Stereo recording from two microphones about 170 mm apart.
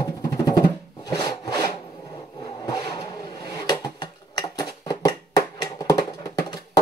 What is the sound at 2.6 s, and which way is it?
Vehicle, 25° left (ahead or behind).